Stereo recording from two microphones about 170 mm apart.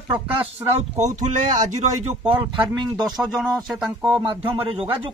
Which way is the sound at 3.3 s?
5° right (ahead or behind).